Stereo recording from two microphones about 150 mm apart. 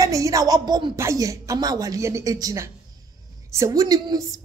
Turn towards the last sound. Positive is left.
turn(degrees=-25)  # may be behind; listen again after turning